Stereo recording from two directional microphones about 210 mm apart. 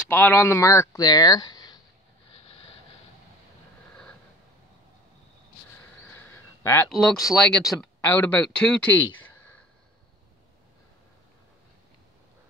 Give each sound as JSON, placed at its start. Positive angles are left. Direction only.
{"t": 0.1, "sound": "speech", "side_deg": 10}
{"t": 6.0, "sound": "a sound", "side_deg": 10}
{"t": 6.9, "sound": "speech", "side_deg": 0}